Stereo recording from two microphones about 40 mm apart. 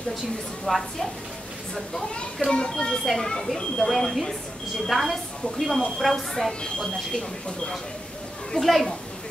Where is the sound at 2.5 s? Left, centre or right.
Centre.